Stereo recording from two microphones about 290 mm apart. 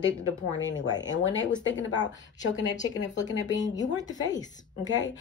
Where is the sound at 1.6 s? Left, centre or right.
Left.